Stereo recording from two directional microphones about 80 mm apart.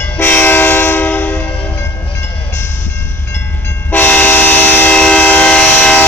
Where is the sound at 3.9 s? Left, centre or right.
Left.